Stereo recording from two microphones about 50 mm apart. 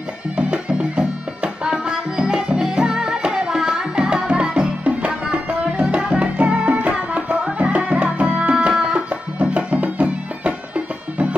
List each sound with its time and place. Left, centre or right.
0.4 s music: right
7.1 s tabla: right
7.5 s music: right